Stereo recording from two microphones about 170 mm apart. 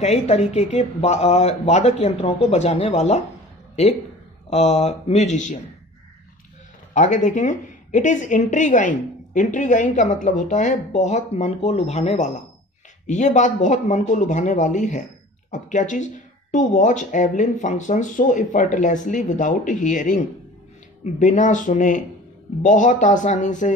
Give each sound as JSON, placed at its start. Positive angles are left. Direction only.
{"t": 0.0, "sound": "speech", "side_deg": 40}
{"t": 4.5, "sound": "speech", "side_deg": 40}
{"t": 6.9, "sound": "a woman's voice", "side_deg": 45}